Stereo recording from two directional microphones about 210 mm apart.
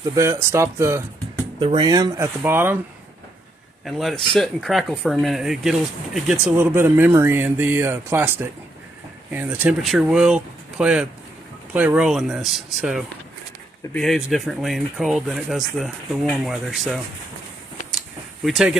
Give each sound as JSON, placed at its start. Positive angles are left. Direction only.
{"t": 0.1, "sound": "speech", "side_deg": -15}
{"t": 3.8, "sound": "speech", "side_deg": 0}
{"t": 18.4, "sound": "speech", "side_deg": 0}